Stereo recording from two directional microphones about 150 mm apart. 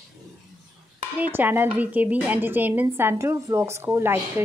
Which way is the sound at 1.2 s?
10° right (ahead or behind).